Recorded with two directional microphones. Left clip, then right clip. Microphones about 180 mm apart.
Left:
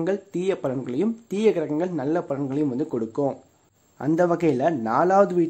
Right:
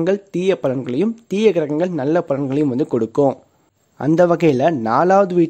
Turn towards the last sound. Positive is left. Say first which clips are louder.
# right 5 dB
turn(degrees=-35)  # may be behind; listen again after turning